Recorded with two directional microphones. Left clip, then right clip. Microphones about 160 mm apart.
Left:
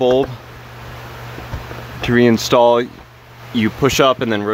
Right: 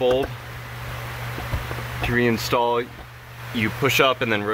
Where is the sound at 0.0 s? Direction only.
45° left (ahead or behind).